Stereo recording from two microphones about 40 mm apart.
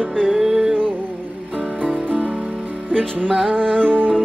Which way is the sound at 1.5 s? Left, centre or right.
Right.